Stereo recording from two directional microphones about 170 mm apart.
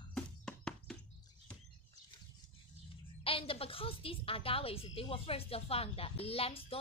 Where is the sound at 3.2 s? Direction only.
30° left (ahead or behind).